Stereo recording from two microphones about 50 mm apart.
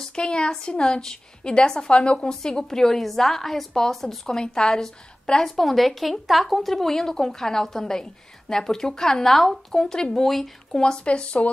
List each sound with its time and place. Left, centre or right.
0.0 s a woman's voice: centre
10.8 s speech: centre